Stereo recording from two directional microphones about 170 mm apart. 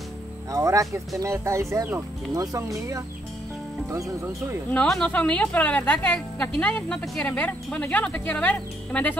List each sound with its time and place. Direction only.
0.5 s speech: 20° right (ahead or behind)
4.6 s speech: 5° left (ahead or behind)